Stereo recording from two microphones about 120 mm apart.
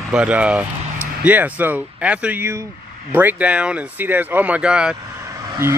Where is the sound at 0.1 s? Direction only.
10° right (ahead or behind).